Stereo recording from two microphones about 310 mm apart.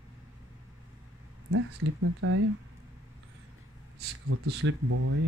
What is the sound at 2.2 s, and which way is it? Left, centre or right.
Speech, right.